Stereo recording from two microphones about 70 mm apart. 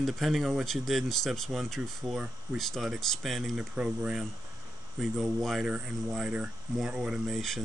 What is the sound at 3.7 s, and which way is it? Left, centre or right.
Speech, centre.